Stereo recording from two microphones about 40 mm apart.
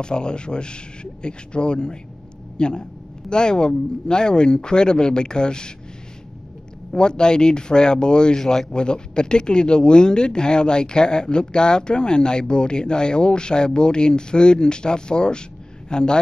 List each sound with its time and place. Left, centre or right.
0.0 s speech: left
6.9 s speech: centre